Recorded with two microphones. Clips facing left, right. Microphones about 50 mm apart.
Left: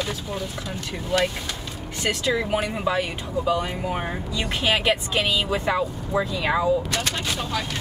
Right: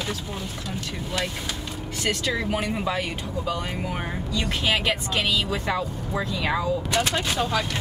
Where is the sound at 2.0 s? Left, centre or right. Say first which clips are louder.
Left 2 dB; centre.